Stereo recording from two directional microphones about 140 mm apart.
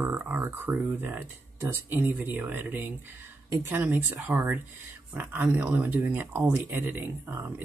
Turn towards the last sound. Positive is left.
turn(degrees=-15)  # may be behind; listen again after turning